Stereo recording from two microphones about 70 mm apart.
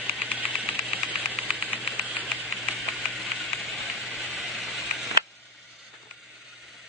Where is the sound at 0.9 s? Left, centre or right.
Right.